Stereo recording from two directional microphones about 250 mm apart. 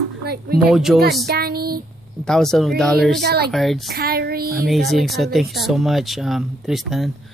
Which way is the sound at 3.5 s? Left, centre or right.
Centre.